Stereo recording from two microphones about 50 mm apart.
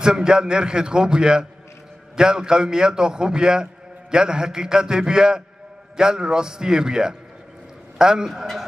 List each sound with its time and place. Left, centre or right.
0.0 s a man's voice: centre